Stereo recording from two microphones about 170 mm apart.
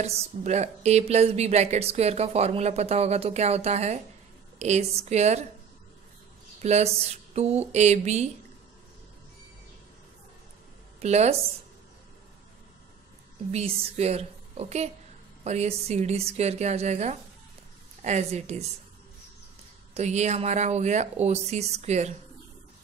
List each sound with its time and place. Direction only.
0.0 s a woman's voice: 40° right (ahead or behind)
6.6 s a woman's voice: 40° right (ahead or behind)
11.0 s speech: 40° right (ahead or behind)
13.5 s a woman's voice: 40° right (ahead or behind)
19.9 s a woman's voice: 40° right (ahead or behind)